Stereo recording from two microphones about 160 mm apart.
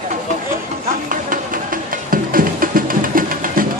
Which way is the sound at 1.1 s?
60° right (ahead or behind).